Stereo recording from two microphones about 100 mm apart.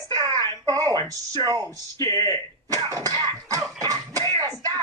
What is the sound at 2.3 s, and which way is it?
Throat clearing, 40° right (ahead or behind).